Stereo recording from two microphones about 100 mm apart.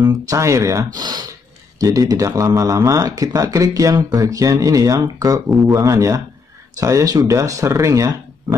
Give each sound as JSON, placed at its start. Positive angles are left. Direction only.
{"t": 0.0, "sound": "speech", "side_deg": -30}